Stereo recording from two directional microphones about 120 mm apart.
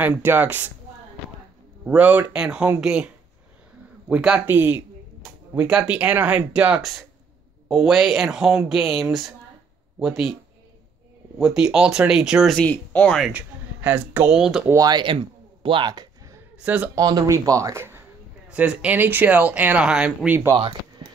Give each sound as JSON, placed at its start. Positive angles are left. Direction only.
{"t": 0.0, "sound": "speech", "side_deg": -15}
{"t": 1.9, "sound": "speech", "side_deg": -10}
{"t": 4.1, "sound": "speech", "side_deg": -5}
{"t": 11.3, "sound": "speech", "side_deg": -5}
{"t": 12.5, "sound": "speech", "side_deg": 15}
{"t": 13.3, "sound": "speech", "side_deg": -15}
{"t": 14.7, "sound": "speech", "side_deg": -35}
{"t": 16.5, "sound": "a man's voice", "side_deg": -10}
{"t": 16.9, "sound": "speech", "side_deg": -30}
{"t": 21.0, "sound": "a sound", "side_deg": -35}